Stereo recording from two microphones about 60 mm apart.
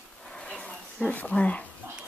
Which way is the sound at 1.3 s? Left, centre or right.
Centre.